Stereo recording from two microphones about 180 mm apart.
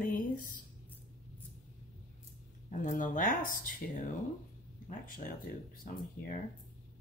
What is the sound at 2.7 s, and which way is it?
Speech, 45° left (ahead or behind).